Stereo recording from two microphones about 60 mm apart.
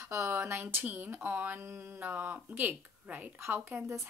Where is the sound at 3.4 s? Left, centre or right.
Right.